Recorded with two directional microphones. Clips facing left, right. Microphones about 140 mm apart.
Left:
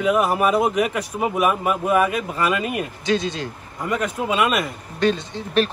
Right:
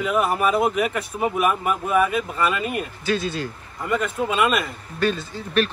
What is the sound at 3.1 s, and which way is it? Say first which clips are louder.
Speech: left 3 dB; 90° left.